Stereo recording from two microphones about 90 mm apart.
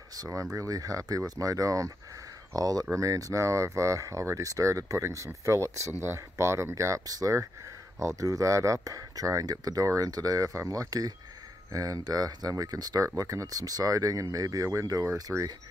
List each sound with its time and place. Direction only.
0.1 s speech: 40° right (ahead or behind)